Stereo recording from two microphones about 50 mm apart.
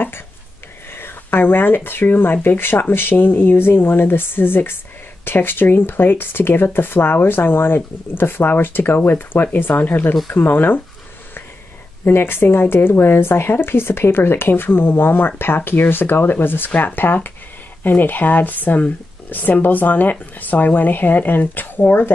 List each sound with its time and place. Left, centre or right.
0.9 s a woman's voice: left
12.0 s a woman's voice: left